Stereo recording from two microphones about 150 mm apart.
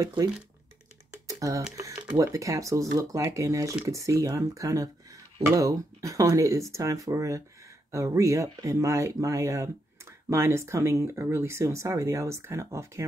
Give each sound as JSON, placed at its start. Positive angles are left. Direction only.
{"t": 0.0, "sound": "speech", "side_deg": -25}
{"t": 1.1, "sound": "typing", "side_deg": -20}
{"t": 1.8, "sound": "speech", "side_deg": -20}